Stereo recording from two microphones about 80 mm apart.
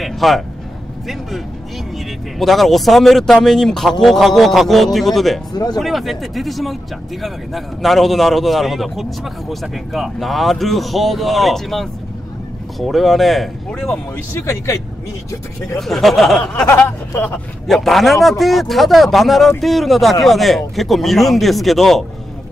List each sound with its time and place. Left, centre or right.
0.0 s speech: centre
2.3 s speech: centre
5.5 s speech: left
5.8 s speech: centre
14.3 s speech: left
15.8 s speech: centre
16.7 s speech: left
17.6 s speech: centre